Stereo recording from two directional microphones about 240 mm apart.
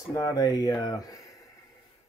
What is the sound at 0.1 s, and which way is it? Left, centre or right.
Speech, centre.